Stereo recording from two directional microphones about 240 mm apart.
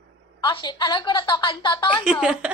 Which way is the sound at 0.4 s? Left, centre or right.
Centre.